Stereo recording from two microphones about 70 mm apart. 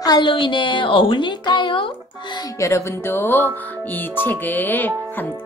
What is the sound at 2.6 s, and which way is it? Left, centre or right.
Speech, left.